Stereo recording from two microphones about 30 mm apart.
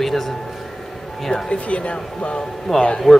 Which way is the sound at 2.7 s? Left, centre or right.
Centre.